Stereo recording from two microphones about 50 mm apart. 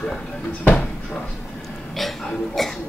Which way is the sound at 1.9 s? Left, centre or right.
Centre.